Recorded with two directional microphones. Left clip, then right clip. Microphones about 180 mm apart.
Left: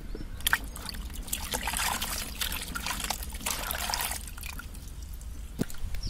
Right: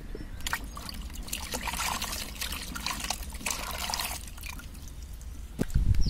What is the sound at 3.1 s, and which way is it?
Liquid, 25° left (ahead or behind).